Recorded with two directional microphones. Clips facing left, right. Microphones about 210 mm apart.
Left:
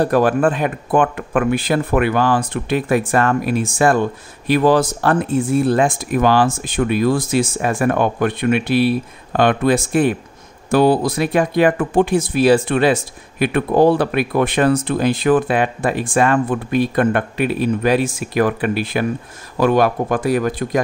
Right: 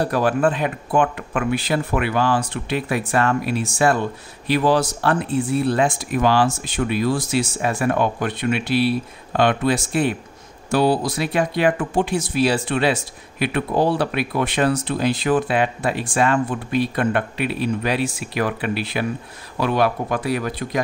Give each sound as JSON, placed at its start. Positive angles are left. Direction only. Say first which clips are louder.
{"t": 0.0, "sound": "speech", "louder": "left 4 dB", "side_deg": 50}